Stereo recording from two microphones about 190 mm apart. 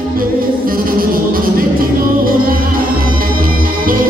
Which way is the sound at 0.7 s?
50° right (ahead or behind).